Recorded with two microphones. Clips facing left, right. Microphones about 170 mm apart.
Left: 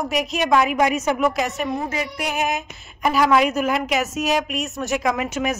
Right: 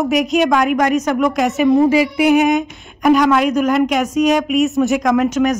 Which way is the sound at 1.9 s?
75° right (ahead or behind).